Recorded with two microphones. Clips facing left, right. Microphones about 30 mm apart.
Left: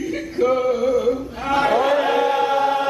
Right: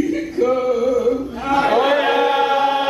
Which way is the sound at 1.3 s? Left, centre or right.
Centre.